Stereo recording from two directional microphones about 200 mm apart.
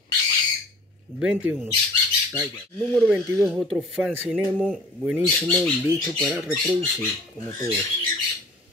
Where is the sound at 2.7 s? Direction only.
5° left (ahead or behind).